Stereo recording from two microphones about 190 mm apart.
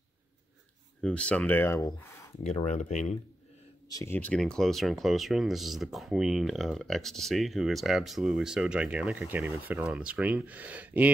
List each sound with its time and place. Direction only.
1.0 s speech: 5° left (ahead or behind)
2.4 s speech: 35° left (ahead or behind)
3.9 s speech: 10° left (ahead or behind); by 11.1 s 10° right (ahead or behind)